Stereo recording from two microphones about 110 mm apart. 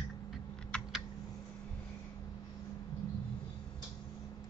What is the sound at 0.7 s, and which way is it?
Typing, 5° left (ahead or behind).